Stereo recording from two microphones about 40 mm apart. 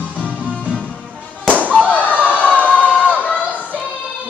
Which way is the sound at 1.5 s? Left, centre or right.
Left.